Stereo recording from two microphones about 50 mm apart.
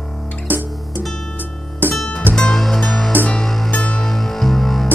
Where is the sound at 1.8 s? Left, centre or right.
Right.